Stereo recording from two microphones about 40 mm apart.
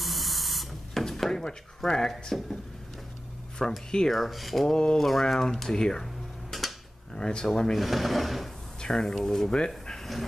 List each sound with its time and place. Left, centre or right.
0.0 s spray: centre
1.0 s drawer open or close: centre
1.8 s speech: centre
3.6 s speech: centre
4.1 s speech: centre
4.6 s a sound: centre
4.9 s speech: centre
6.5 s a sound: centre
7.2 s speech: centre
7.7 s speech: centre
8.8 s speech: centre